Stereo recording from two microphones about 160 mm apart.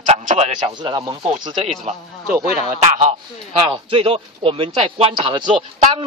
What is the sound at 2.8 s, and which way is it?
A man's voice, 40° right (ahead or behind).